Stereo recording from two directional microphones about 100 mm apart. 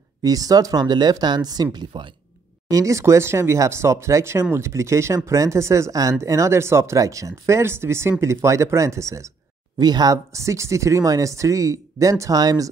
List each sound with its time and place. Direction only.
0.2 s speech: 40° right (ahead or behind)
2.7 s speech: 30° right (ahead or behind)
9.8 s speech: 40° right (ahead or behind)
10.1 s speech: 30° right (ahead or behind)